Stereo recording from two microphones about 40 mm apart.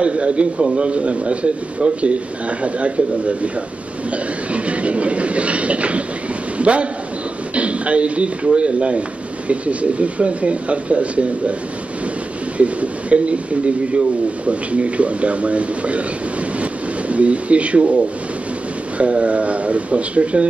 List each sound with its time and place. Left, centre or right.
0.0 s a man's voice: right
4.5 s train: right
6.6 s a man's voice: right
7.5 s a sound: right
8.5 s speech: right
12.5 s speech: right
17.1 s speech: right
18.9 s speech: right